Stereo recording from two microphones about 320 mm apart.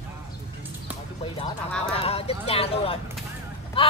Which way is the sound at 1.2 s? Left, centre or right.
Centre.